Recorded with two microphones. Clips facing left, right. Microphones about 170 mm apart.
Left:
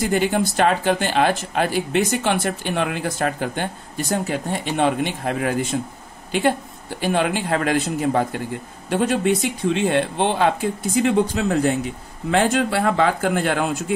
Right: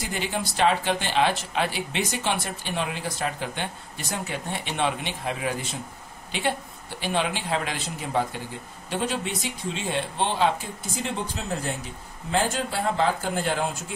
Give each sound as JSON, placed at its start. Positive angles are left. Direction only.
{"t": 0.0, "sound": "speech", "side_deg": 50}
{"t": 7.0, "sound": "speech", "side_deg": 50}